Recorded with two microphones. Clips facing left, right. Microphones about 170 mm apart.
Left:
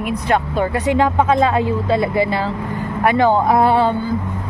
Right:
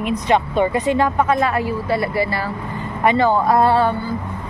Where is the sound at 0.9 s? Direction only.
20° left (ahead or behind).